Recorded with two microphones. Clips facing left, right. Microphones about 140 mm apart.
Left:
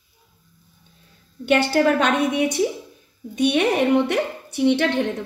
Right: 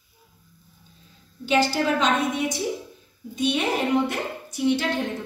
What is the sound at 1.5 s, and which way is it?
A woman's voice, 60° left (ahead or behind).